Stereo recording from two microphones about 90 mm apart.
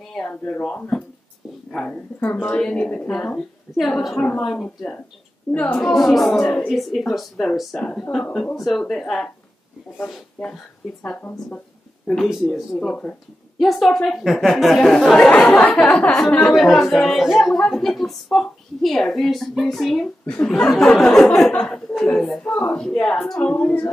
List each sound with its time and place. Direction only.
0.1 s a woman's voice: 10° left (ahead or behind)
5.9 s a woman's voice: centre (ahead or behind)
12.4 s a woman's voice: 5° left (ahead or behind)
23.5 s a woman's voice: 15° left (ahead or behind)